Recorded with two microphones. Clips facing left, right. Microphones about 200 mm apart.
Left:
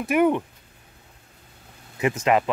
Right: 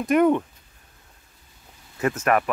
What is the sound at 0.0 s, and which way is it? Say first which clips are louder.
Speech: right 2 dB; 10° left (ahead or behind).